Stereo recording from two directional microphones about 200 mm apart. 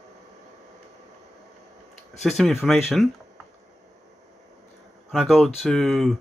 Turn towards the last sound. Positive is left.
turn(degrees=0)  # may be behind; listen again after turning